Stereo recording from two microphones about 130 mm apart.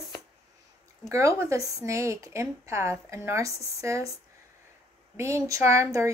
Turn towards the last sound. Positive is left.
turn(degrees=-25)  # may be behind; listen again after turning